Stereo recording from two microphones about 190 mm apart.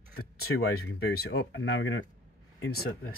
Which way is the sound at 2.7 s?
50° left (ahead or behind).